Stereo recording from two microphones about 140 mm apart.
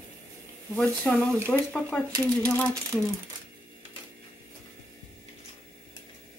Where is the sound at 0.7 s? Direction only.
5° left (ahead or behind).